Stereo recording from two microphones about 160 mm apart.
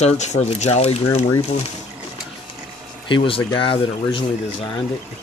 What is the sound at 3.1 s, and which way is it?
Speech, 30° left (ahead or behind).